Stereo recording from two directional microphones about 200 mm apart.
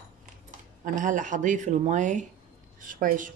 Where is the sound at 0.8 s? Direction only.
40° right (ahead or behind).